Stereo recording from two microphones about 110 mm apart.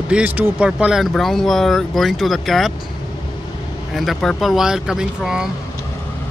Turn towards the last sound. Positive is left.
turn(degrees=-5)  # may be behind; listen again after turning